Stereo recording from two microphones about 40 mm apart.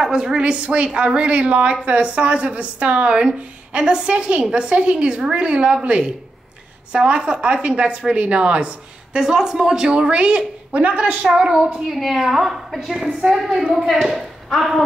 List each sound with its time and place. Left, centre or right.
0.0 s a woman's voice: centre; by 11.2 s right
11.3 s a woman's voice: centre
11.9 s a woman's voice: centre